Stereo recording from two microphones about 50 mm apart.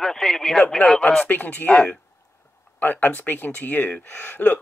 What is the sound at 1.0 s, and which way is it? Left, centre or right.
Speech, left.